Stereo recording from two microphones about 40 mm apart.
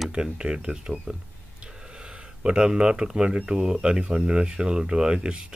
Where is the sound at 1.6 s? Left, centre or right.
Centre.